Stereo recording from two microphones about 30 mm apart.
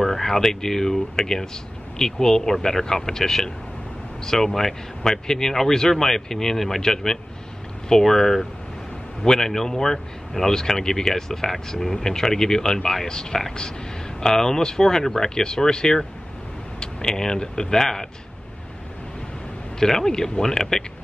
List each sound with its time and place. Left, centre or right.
0.0 s speech: centre
19.8 s speech: centre